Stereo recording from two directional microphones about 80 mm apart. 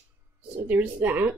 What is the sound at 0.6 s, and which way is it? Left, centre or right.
Speech, right.